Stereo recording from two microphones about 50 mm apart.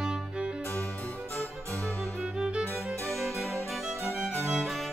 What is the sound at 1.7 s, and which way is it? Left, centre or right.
Music, left.